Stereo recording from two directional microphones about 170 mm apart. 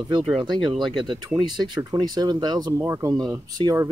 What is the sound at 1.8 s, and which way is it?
Speech, 25° right (ahead or behind).